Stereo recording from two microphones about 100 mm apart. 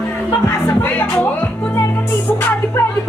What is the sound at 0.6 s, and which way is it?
Music, 20° left (ahead or behind).